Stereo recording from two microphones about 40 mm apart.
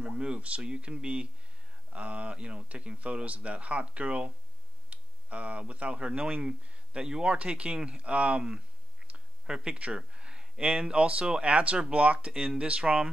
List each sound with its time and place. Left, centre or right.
0.1 s speech: right